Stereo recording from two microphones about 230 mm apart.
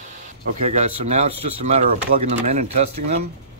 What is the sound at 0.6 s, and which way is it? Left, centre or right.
Speech, right.